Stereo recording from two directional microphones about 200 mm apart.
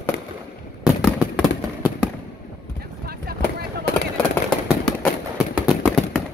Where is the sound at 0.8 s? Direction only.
5° right (ahead or behind).